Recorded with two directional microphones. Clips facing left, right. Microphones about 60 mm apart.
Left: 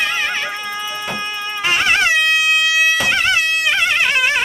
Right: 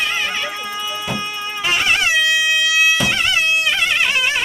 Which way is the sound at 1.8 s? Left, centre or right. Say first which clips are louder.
Left 2 dB; left.